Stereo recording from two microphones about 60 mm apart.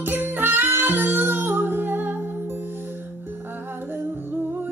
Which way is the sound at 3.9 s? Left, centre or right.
Right.